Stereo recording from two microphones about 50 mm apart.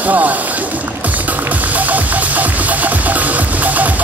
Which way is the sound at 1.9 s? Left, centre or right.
Right.